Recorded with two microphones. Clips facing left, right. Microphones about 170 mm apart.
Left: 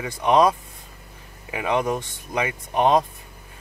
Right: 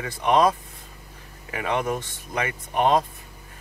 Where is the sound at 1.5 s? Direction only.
15° left (ahead or behind).